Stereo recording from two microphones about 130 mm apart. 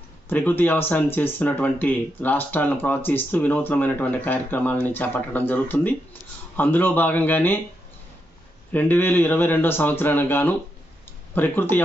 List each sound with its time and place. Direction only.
0.3 s speech: 15° left (ahead or behind)
8.7 s speech: 15° left (ahead or behind)